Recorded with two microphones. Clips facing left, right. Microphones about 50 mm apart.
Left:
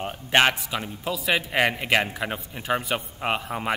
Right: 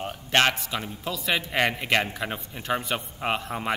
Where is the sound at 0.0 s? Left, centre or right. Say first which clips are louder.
Left 2 dB; centre.